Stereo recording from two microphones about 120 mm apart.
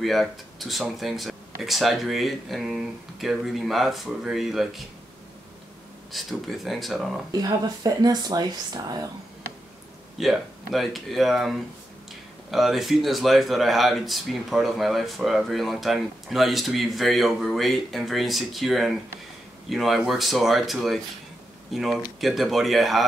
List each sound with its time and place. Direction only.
0.0 s speech: centre (ahead or behind)
6.1 s speech: centre (ahead or behind)
7.3 s speech: 35° right (ahead or behind)
10.1 s speech: centre (ahead or behind)